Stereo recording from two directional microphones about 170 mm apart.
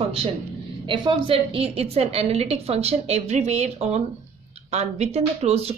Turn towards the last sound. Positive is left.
turn(degrees=-35)  # may be behind; listen again after turning